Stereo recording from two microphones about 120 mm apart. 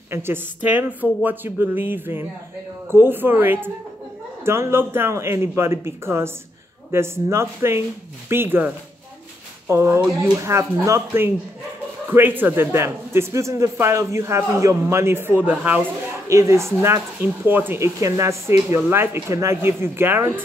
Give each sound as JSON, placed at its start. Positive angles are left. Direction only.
{"t": 0.1, "sound": "a woman's voice", "side_deg": -15}
{"t": 16.3, "sound": "speech", "side_deg": -25}